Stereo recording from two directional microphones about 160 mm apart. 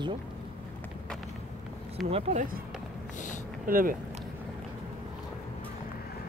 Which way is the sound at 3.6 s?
60° right (ahead or behind).